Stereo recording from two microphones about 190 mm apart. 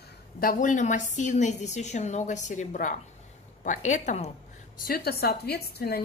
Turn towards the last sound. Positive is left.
turn(degrees=55)  # may be behind; listen again after turning